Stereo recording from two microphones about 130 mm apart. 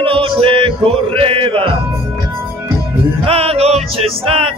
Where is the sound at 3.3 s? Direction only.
50° right (ahead or behind).